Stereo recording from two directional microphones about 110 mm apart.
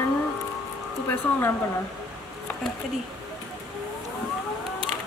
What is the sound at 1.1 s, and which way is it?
Speech, 20° left (ahead or behind).